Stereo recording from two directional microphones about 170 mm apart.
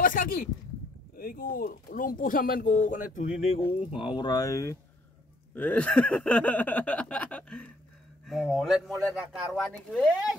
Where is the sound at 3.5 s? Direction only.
35° left (ahead or behind).